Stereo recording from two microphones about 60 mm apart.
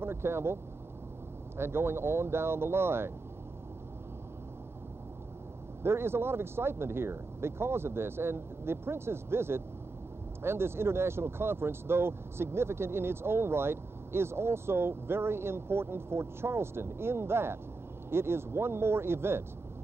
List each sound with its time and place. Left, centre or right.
0.0 s speech: right
1.6 s speech: right
5.8 s speech: right